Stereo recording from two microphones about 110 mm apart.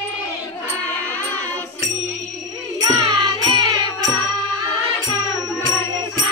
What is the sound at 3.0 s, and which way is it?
Music, 45° right (ahead or behind).